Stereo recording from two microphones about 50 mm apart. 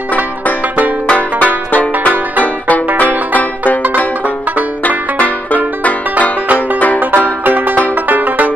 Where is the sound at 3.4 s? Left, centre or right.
Left.